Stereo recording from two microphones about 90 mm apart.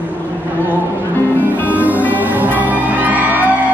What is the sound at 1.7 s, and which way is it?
Music, 20° right (ahead or behind).